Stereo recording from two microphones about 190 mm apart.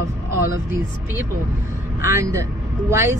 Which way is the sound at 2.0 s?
15° right (ahead or behind).